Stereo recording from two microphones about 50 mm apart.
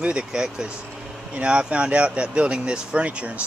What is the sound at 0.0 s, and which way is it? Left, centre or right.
Speech, right.